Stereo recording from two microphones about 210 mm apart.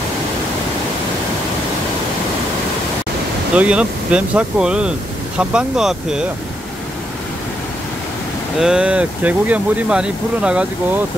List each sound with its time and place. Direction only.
3.5 s speech: 5° right (ahead or behind)
8.5 s speech: 5° right (ahead or behind)